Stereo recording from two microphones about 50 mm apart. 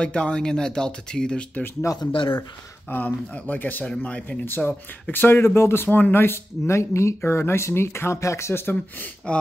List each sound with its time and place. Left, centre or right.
0.0 s speech: centre
1.8 s speech: left
2.9 s speech: left
4.5 s speech: left
5.4 s speech: left
7.2 s speech: left
9.3 s speech: left